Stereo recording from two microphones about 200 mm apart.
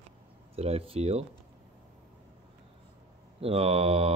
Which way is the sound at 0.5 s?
30° right (ahead or behind).